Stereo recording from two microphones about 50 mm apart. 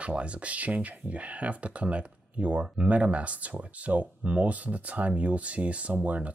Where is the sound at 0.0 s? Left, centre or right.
Right.